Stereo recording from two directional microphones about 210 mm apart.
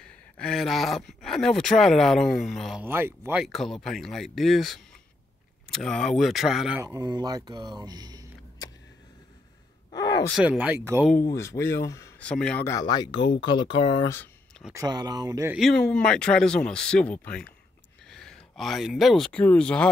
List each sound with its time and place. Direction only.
0.0 s speech: 5° left (ahead or behind)
3.4 s speech: centre (ahead or behind)
6.8 s speech: 15° right (ahead or behind)
9.8 s gasp: 20° left (ahead or behind)
10.3 s speech: 5° right (ahead or behind)
11.1 s speech: 10° left (ahead or behind)
14.7 s speech: 15° right (ahead or behind)
15.5 s speech: centre (ahead or behind)